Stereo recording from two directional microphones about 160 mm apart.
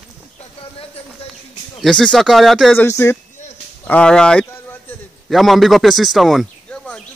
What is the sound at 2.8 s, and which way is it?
Speech, 15° left (ahead or behind).